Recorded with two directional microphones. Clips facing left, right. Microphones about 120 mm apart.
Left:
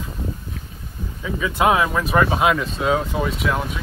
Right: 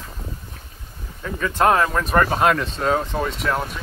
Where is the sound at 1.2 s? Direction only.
5° left (ahead or behind).